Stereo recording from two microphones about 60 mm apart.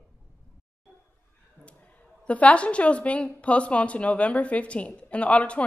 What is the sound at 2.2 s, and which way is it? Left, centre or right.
A woman's voice, left.